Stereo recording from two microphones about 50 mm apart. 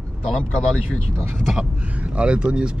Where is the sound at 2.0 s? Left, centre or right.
Right.